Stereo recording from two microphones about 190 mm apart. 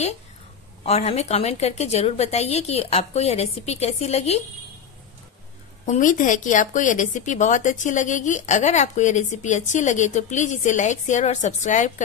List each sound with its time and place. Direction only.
0.8 s a woman's voice: 35° left (ahead or behind)
5.9 s a woman's voice: 45° left (ahead or behind)